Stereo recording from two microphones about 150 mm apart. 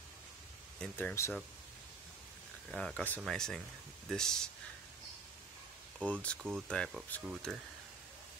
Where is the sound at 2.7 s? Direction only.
5° left (ahead or behind).